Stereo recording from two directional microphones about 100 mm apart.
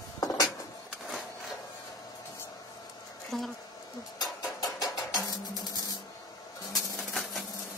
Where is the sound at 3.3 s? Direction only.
Centre (ahead or behind).